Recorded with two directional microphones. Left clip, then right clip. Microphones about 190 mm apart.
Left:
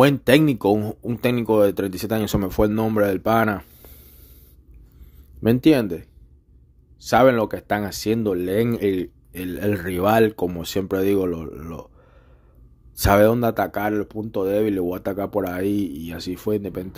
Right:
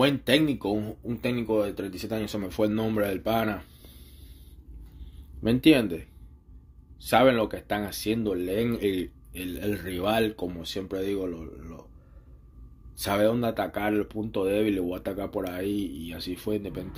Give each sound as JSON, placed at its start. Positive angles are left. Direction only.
{"t": 0.0, "sound": "speech", "side_deg": 50}
{"t": 5.4, "sound": "speech", "side_deg": 40}
{"t": 12.9, "sound": "speech", "side_deg": 55}